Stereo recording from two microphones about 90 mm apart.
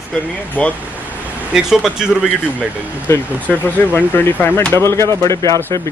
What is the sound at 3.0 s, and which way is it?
Speech, 30° left (ahead or behind).